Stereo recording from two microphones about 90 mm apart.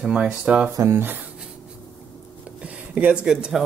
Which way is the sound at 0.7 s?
30° right (ahead or behind).